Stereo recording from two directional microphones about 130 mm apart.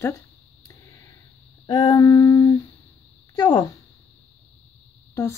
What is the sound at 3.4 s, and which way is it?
Speech, 30° left (ahead or behind).